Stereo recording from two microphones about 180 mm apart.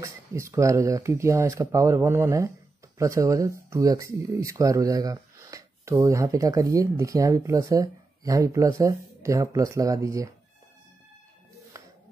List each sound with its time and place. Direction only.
0.0 s speech: 15° right (ahead or behind)
11.7 s music: 15° right (ahead or behind)